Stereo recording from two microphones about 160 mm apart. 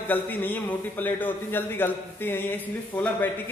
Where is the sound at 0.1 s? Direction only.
10° left (ahead or behind).